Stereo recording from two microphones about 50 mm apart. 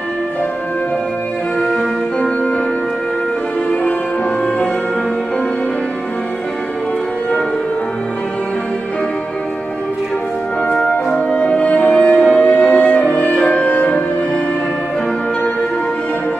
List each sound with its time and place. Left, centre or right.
1.6 s music: centre
2.1 s music: centre
10.6 s brass instrument: left
11.1 s music: centre